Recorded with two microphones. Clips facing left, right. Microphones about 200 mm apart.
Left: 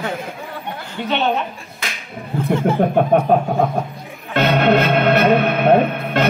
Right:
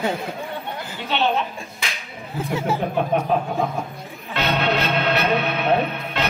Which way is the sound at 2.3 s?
5° right (ahead or behind).